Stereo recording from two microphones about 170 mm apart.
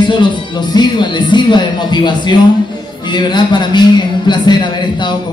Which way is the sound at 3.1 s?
25° left (ahead or behind).